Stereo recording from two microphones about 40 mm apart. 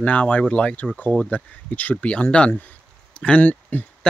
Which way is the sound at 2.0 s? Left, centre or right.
Left.